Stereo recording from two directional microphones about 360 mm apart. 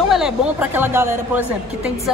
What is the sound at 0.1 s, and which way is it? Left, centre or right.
A woman's voice, centre.